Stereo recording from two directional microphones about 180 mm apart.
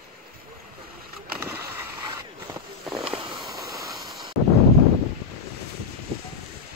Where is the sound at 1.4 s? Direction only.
10° right (ahead or behind).